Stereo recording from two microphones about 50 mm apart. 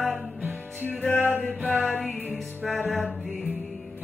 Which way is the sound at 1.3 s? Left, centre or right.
Left.